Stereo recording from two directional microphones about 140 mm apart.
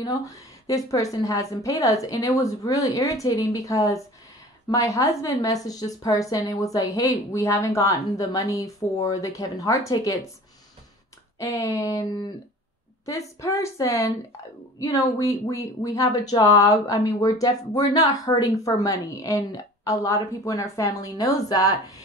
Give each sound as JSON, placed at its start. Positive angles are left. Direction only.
{"t": 0.0, "sound": "a woman's voice", "side_deg": 25}
{"t": 11.3, "sound": "a woman's voice", "side_deg": 25}